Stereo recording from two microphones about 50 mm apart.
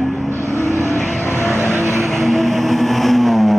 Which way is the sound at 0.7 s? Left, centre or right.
Right.